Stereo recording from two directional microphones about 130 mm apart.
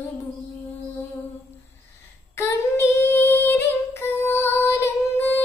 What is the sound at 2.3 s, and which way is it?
Singing, 20° left (ahead or behind).